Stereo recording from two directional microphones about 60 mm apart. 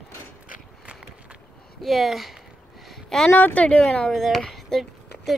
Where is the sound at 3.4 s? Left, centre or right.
Left.